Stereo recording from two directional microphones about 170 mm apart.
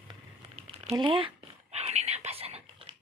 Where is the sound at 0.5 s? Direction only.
35° right (ahead or behind).